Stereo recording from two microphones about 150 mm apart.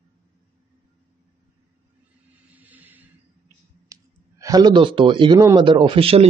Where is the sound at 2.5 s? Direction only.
10° right (ahead or behind).